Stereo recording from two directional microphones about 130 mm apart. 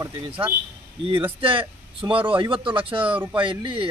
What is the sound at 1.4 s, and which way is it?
A man's voice, 45° right (ahead or behind).